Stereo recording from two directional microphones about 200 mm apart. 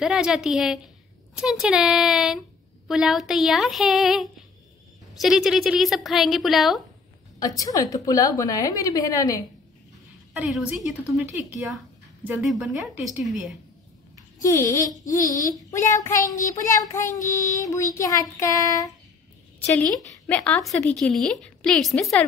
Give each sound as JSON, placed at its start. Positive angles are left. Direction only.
{"t": 0.0, "sound": "a woman's voice", "side_deg": 0}
{"t": 7.3, "sound": "a woman's voice", "side_deg": 15}
{"t": 10.3, "sound": "a woman's voice", "side_deg": -5}
{"t": 14.4, "sound": "a woman's voice", "side_deg": 15}
{"t": 19.6, "sound": "a woman's voice", "side_deg": 5}